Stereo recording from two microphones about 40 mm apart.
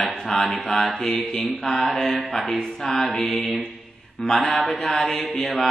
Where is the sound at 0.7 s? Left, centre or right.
Centre.